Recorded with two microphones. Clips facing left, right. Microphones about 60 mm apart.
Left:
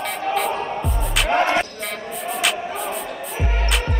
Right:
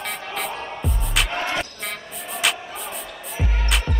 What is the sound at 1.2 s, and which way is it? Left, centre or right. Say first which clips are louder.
Music: left 7 dB; left.